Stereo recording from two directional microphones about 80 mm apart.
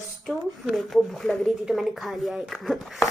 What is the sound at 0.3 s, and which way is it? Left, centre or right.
Speech, centre.